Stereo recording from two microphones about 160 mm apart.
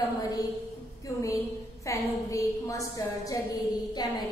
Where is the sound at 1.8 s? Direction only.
20° left (ahead or behind).